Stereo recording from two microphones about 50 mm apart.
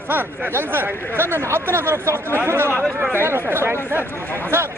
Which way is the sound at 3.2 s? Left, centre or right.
Right.